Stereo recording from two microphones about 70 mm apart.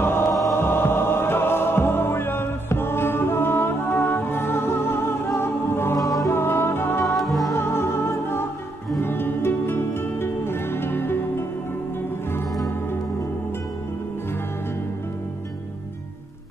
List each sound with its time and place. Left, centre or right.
0.0 s music: left
0.3 s music: centre
0.6 s music: left
7.2 s music: centre
7.5 s music: left